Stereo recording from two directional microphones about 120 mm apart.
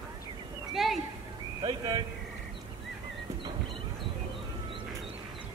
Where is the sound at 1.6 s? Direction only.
40° right (ahead or behind).